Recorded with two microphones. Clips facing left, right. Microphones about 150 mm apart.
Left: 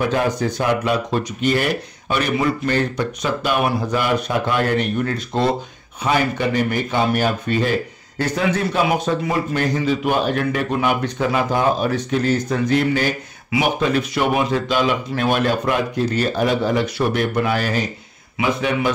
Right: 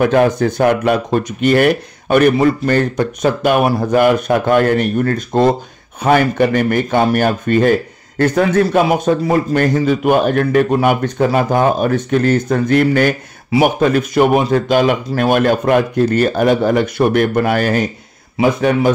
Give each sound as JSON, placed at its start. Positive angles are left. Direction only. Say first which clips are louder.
{"t": 0.0, "sound": "a man's voice", "louder": "right 7 dB", "side_deg": -55}
{"t": 18.4, "sound": "speech", "louder": "right 7 dB", "side_deg": -40}